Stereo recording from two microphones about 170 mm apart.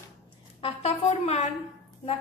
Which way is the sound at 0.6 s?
35° left (ahead or behind).